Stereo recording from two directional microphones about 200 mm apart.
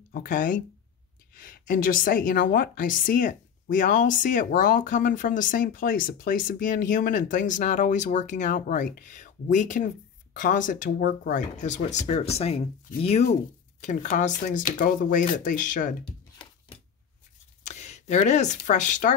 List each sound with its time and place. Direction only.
0.1 s a woman's voice: 45° left (ahead or behind)
17.6 s speech: 35° left (ahead or behind)